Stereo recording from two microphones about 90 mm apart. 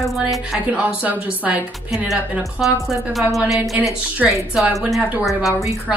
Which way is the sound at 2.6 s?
Centre (ahead or behind).